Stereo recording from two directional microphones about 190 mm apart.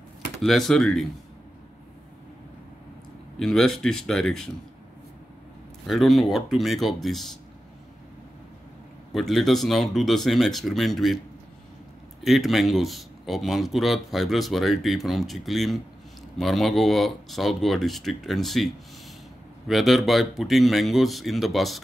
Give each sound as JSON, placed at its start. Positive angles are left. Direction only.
{"t": 0.4, "sound": "speech", "side_deg": 0}
{"t": 3.3, "sound": "speech", "side_deg": 5}
{"t": 5.9, "sound": "speech", "side_deg": 0}
{"t": 9.1, "sound": "speech", "side_deg": 0}
{"t": 12.2, "sound": "speech", "side_deg": 0}
{"t": 19.7, "sound": "speech", "side_deg": 0}